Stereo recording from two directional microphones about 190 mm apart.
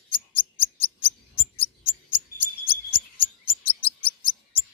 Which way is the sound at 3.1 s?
30° left (ahead or behind).